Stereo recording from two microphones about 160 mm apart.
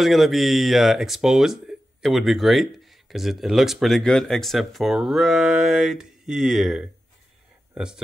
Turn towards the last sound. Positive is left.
turn(degrees=-5)  # may be behind; listen again after turning